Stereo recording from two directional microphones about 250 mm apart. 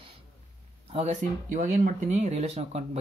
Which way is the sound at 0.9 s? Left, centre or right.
Right.